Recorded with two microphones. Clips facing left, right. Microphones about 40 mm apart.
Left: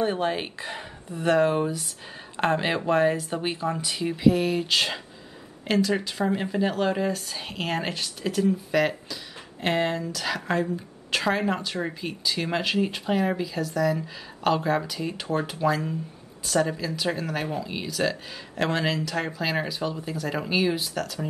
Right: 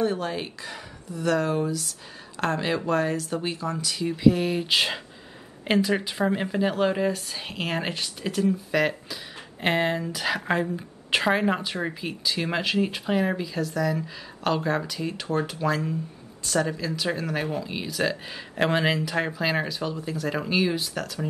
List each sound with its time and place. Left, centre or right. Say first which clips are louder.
0.0 s speech: left 1 dB; left
4.2 s speech: even; centre
9.6 s a woman's voice: right 1 dB; centre
18.6 s a woman's voice: right 2 dB; centre
19.3 s speech: right 1 dB; centre